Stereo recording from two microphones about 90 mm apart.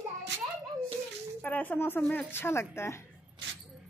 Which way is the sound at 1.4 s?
20° left (ahead or behind).